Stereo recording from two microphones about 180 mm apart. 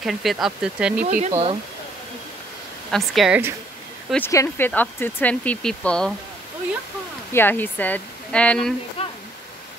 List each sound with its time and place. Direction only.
0.0 s speech: centre (ahead or behind)
1.0 s speech: 40° right (ahead or behind)
2.9 s speech: 5° right (ahead or behind)
4.1 s speech: 15° left (ahead or behind)
7.3 s speech: 10° left (ahead or behind)